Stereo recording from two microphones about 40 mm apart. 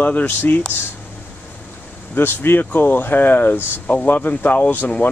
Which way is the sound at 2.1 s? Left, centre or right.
Left.